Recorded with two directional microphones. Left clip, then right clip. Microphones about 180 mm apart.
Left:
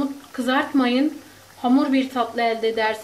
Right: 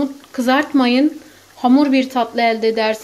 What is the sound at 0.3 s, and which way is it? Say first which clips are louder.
A woman's voice: right 6 dB; 50° right (ahead or behind).